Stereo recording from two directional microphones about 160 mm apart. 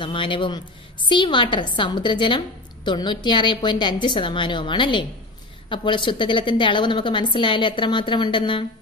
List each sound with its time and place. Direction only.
0.0 s a woman's voice: 30° left (ahead or behind)